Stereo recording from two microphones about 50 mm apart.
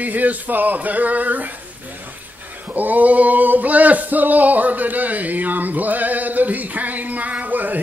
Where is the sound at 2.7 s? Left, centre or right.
Right.